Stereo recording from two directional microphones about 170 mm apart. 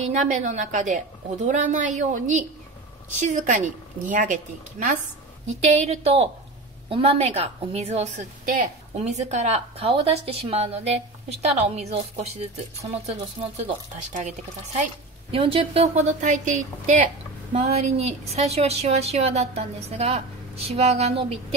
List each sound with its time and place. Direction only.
0.0 s a woman's voice: 45° right (ahead or behind)
5.6 s a woman's voice: 35° right (ahead or behind)
15.3 s a woman's voice: 35° right (ahead or behind)